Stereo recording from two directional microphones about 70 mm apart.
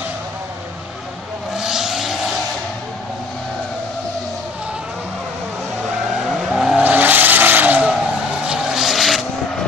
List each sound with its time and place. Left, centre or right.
1.6 s vehicle: centre
6.2 s vehicle: centre
6.8 s vehicle: right
8.4 s vehicle: centre